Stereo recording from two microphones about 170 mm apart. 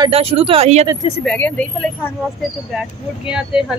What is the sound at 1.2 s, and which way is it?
Speech, 10° left (ahead or behind).